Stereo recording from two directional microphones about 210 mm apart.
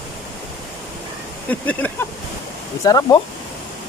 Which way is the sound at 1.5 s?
5° left (ahead or behind).